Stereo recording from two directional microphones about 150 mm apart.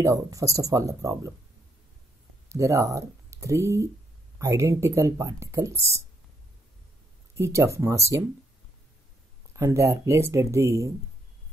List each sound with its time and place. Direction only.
0.0 s speech: 20° right (ahead or behind)
2.5 s speech: 20° right (ahead or behind)
7.3 s speech: 20° right (ahead or behind)
9.5 s speech: 20° right (ahead or behind)